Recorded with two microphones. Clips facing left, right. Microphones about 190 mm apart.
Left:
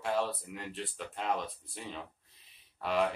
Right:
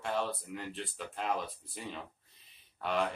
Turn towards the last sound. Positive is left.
turn(degrees=0)  # may be behind; listen again after turning